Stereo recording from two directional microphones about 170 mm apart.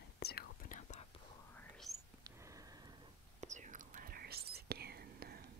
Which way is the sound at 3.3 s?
45° right (ahead or behind).